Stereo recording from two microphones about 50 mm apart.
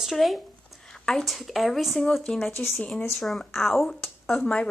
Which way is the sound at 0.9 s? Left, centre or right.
Centre.